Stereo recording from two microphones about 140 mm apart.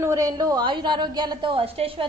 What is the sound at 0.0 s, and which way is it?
A woman's voice, 20° right (ahead or behind).